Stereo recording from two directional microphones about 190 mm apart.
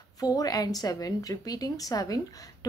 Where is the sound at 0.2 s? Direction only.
20° left (ahead or behind).